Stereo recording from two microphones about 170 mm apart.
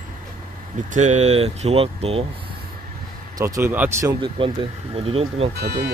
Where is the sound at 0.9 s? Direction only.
45° right (ahead or behind).